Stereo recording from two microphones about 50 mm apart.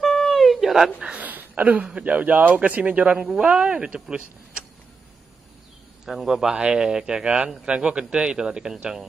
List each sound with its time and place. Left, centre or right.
0.0 s a sound: centre
1.0 s speech: right
3.3 s speech: centre
6.0 s speech: centre